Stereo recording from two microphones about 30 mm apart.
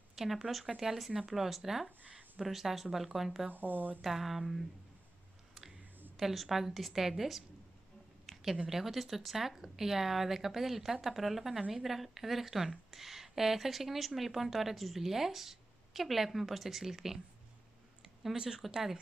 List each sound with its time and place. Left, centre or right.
0.1 s a woman's voice: centre
3.4 s speech: right
4.0 s speech: centre
6.1 s a woman's voice: centre
8.3 s a sound: centre
8.6 s a woman's voice: centre
18.3 s speech: right